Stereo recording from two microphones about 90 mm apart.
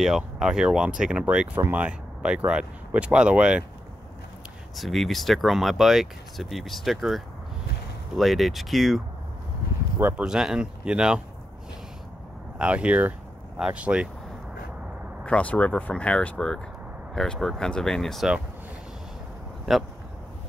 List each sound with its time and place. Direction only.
0.0 s speech: 5° right (ahead or behind)
4.7 s speech: centre (ahead or behind)
9.9 s speech: 20° right (ahead or behind)
10.2 s speech: 5° right (ahead or behind)
12.5 s speech: 15° right (ahead or behind)
15.2 s speech: 15° left (ahead or behind)
19.7 s speech: centre (ahead or behind)